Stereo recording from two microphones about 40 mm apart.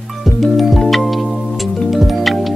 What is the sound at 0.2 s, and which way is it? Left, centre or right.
Music, centre.